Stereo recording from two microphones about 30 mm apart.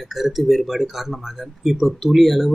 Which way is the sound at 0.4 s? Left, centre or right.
Centre.